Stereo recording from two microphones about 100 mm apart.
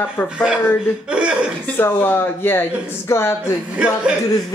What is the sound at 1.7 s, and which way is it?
Speech, 20° left (ahead or behind).